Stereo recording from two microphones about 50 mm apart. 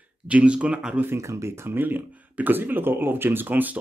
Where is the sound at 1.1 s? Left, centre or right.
Right.